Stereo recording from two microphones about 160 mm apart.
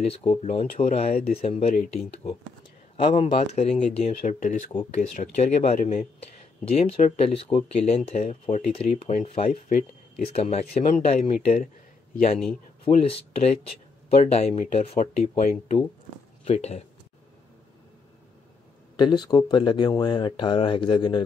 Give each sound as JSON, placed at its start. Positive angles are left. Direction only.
{"t": 0.0, "sound": "speech", "side_deg": 40}
{"t": 3.3, "sound": "speech", "side_deg": 45}
{"t": 12.8, "sound": "speech", "side_deg": 40}
{"t": 18.9, "sound": "speech", "side_deg": 25}